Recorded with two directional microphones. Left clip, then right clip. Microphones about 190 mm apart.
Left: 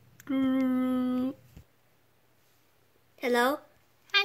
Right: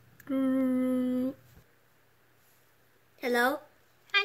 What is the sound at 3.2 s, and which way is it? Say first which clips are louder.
Speech: left 1 dB; 15° left (ahead or behind).